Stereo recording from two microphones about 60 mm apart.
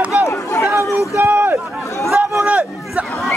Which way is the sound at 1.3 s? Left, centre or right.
Right.